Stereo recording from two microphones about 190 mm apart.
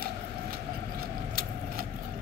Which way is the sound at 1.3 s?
50° right (ahead or behind).